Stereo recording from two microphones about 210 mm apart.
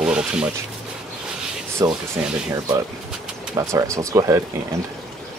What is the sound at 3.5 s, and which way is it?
Speech, 15° right (ahead or behind).